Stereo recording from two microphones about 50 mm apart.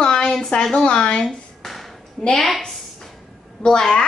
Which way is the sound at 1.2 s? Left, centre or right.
Centre.